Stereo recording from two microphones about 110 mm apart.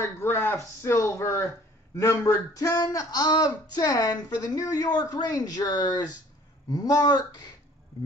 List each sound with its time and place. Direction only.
0.0 s speech: 25° left (ahead or behind)